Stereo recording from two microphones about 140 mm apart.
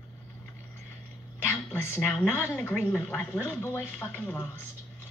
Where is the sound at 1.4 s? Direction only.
15° left (ahead or behind).